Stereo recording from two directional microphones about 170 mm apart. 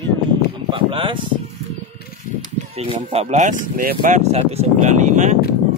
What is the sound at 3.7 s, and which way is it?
Speech, 55° right (ahead or behind).